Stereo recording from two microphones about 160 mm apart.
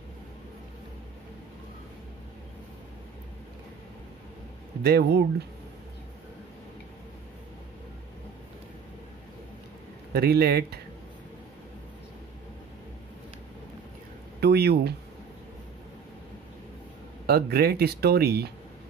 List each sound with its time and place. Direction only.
4.8 s speech: 85° right
10.1 s speech: 85° right
14.4 s speech: 85° right
17.3 s speech: 75° right (ahead or behind)